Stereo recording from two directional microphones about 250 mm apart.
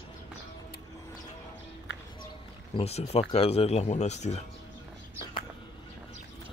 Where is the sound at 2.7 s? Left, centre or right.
Left.